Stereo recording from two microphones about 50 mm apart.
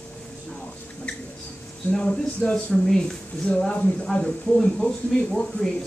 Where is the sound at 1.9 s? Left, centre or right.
Left.